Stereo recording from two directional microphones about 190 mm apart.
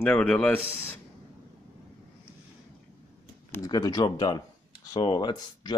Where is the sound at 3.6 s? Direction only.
20° left (ahead or behind).